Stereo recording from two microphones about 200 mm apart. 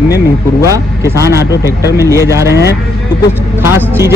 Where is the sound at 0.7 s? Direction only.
15° right (ahead or behind).